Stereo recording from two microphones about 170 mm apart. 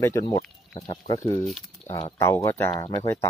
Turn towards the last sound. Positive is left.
turn(degrees=15)  # may be behind; listen again after turning